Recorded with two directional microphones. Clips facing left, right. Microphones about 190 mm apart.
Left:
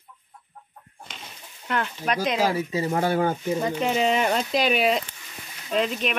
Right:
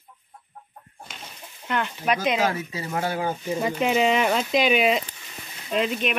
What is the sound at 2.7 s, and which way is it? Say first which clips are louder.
Speech: left 4 dB; 40° left (ahead or behind).